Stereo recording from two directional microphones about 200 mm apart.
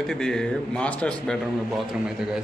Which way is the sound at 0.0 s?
Centre (ahead or behind).